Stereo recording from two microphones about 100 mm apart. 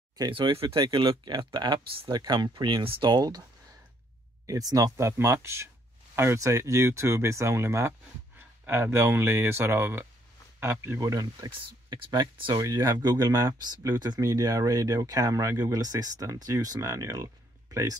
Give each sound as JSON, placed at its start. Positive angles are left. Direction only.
{"t": 0.3, "sound": "speech", "side_deg": -60}
{"t": 4.5, "sound": "speech", "side_deg": -35}
{"t": 12.5, "sound": "speech", "side_deg": -35}